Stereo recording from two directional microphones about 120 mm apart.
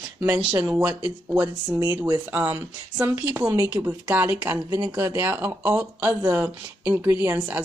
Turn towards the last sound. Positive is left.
turn(degrees=-15)  # may be behind; listen again after turning